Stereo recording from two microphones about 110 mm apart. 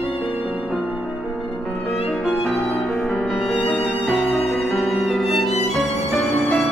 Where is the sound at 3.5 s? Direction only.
Centre (ahead or behind).